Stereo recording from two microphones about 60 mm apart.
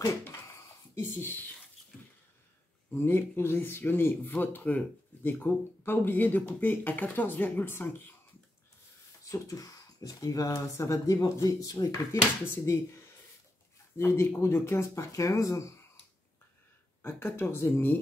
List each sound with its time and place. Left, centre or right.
0.9 s speech: left
2.9 s speech: left
9.2 s speech: left
10.8 s speech: left
11.4 s speech: left
12.1 s speech: left
13.9 s speech: left
17.0 s speech: left